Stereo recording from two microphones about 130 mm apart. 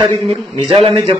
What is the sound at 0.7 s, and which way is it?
Speech, 45° right (ahead or behind).